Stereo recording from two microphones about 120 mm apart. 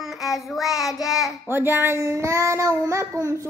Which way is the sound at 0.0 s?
Centre (ahead or behind).